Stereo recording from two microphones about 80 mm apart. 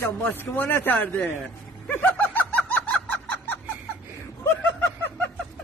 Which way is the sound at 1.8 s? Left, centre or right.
Left.